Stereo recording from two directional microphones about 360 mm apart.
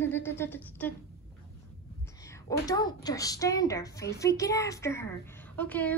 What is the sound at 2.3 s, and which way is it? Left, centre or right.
A woman's voice, centre.